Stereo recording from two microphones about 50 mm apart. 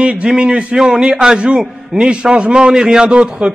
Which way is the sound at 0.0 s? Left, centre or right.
Right.